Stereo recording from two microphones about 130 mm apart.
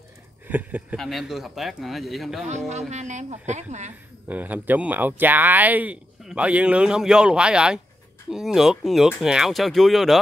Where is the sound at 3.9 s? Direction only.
15° right (ahead or behind).